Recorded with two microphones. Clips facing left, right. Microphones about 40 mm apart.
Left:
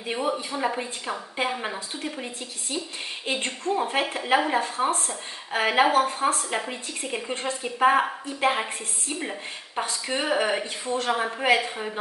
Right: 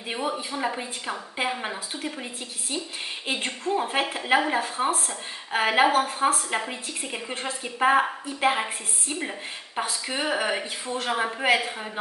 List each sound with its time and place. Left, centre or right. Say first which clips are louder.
0.0 s a woman's voice: left 2 dB; centre
3.3 s a woman's voice: left 1 dB; centre